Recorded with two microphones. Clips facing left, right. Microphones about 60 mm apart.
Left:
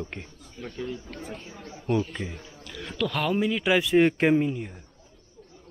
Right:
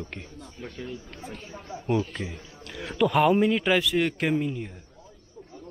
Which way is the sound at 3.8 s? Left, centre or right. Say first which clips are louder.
Left 5 dB; left.